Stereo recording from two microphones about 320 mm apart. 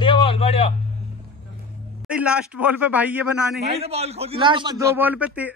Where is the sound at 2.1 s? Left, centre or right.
Centre.